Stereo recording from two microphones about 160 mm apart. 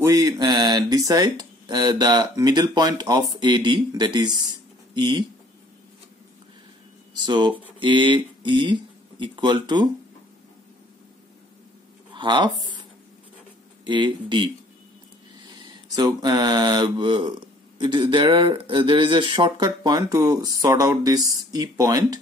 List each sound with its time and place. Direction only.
0.0 s speech: 20° right (ahead or behind)
7.2 s speech: 30° right (ahead or behind)
12.1 s speech: 30° right (ahead or behind)
13.8 s speech: 30° right (ahead or behind)
15.9 s speech: 25° right (ahead or behind)